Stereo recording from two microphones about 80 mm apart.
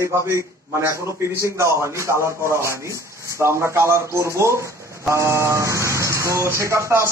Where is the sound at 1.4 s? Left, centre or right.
Right.